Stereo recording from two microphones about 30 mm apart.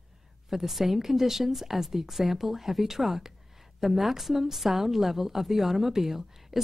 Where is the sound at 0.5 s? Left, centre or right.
Centre.